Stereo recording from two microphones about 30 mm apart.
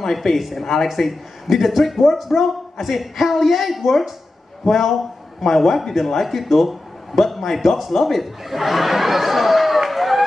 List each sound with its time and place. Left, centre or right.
0.1 s a man's voice: centre